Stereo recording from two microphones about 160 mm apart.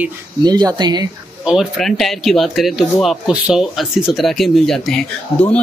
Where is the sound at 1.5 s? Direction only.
Centre (ahead or behind).